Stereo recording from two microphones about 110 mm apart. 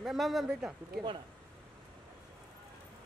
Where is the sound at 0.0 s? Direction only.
Centre (ahead or behind).